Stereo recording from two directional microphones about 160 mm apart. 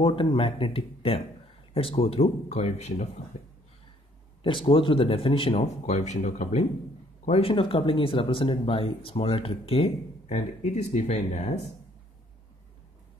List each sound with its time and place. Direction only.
0.0 s speech: 35° left (ahead or behind)
4.4 s speech: 30° left (ahead or behind); by 6.6 s 50° left (ahead or behind)
7.2 s speech: 35° left (ahead or behind)